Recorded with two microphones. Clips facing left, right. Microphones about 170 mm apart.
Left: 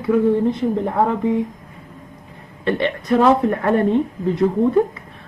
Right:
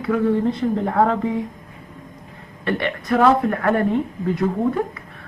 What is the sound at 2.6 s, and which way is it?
A woman's voice, 20° left (ahead or behind).